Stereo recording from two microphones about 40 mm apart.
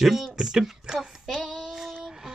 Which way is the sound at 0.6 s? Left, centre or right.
Centre.